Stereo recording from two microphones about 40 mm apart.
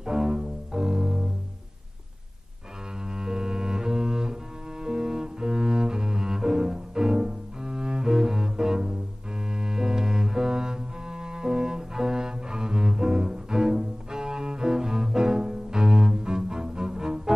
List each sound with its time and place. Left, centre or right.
0.0 s music: centre
3.1 s double bass: centre
4.8 s cello: centre
9.5 s double bass: centre